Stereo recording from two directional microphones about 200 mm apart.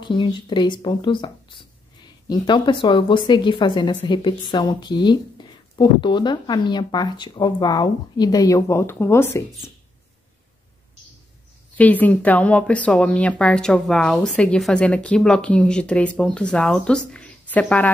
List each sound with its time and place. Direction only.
0.0 s speech: 25° left (ahead or behind)
11.7 s speech: 10° left (ahead or behind)